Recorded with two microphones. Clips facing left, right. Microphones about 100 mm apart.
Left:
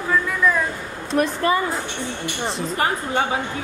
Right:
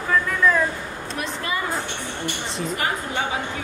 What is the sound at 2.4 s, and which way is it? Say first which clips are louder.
Speech: left 5 dB; centre (ahead or behind).